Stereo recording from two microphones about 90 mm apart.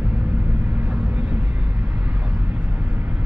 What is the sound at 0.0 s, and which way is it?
Vehicle, 20° right (ahead or behind).